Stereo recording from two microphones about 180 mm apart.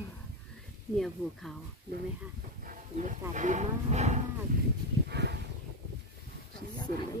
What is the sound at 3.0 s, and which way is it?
Moo, 40° right (ahead or behind).